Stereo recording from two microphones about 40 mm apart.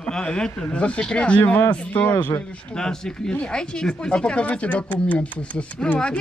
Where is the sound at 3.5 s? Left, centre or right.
Left.